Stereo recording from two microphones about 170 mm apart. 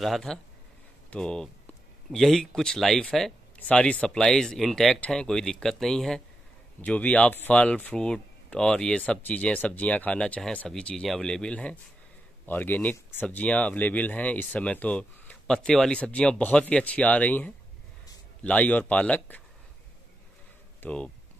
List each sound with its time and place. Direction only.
0.0 s speech: centre (ahead or behind)
20.8 s speech: 5° left (ahead or behind)